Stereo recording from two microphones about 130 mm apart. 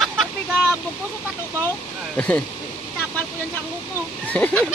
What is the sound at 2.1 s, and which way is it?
Speech, 10° left (ahead or behind).